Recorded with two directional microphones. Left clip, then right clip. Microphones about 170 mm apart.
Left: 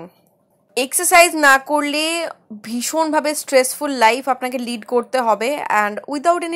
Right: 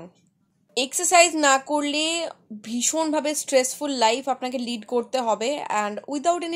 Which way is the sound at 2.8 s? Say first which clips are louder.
Left 6 dB; 10° left (ahead or behind).